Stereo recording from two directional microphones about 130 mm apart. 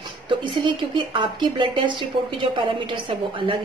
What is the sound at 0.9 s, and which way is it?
A woman's voice, 40° right (ahead or behind).